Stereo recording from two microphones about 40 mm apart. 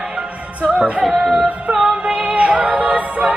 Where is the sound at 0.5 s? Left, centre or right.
Right.